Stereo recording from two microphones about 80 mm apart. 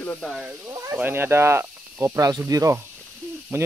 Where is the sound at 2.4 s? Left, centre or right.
Right.